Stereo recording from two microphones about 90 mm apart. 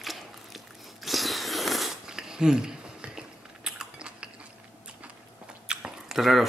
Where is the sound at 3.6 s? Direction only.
10° right (ahead or behind).